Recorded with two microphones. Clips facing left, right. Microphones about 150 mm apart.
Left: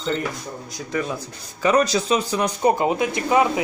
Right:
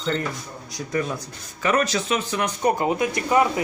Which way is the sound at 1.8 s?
35° left (ahead or behind).